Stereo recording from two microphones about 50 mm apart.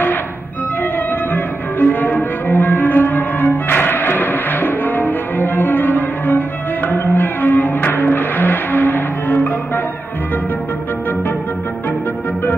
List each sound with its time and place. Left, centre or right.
0.9 s music: left